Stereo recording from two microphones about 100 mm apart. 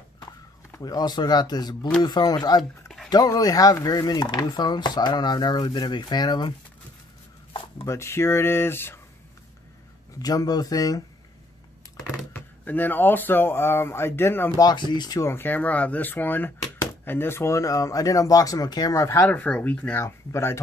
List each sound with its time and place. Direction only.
0.7 s speech: 40° left (ahead or behind)
7.8 s speech: 30° left (ahead or behind)
10.1 s speech: 40° left (ahead or behind)
12.3 s speech: 20° left (ahead or behind)
14.6 s speech: 45° left (ahead or behind)
15.1 s speech: 25° left (ahead or behind)
19.2 s speech: 15° left (ahead or behind)
20.0 s speech: 25° left (ahead or behind)